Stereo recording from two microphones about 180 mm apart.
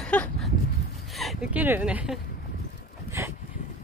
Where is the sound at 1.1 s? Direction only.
Centre (ahead or behind).